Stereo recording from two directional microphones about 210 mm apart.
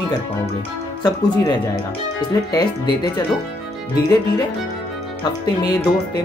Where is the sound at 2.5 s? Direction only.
20° left (ahead or behind).